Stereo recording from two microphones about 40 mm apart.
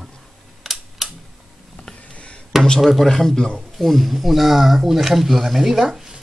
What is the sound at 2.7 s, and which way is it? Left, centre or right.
Speech, centre.